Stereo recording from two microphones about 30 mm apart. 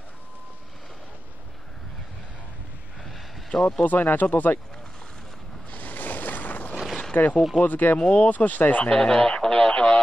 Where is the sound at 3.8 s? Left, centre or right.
Left.